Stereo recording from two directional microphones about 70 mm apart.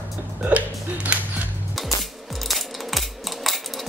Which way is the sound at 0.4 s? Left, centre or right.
Right.